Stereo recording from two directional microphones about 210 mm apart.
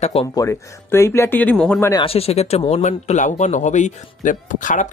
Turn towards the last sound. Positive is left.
turn(degrees=40)  # may be behind; listen again after turning